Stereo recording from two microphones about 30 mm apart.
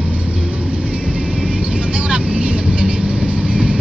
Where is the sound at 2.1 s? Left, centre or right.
Right.